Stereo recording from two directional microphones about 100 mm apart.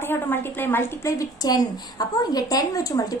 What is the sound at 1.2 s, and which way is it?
A woman's voice, 40° left (ahead or behind).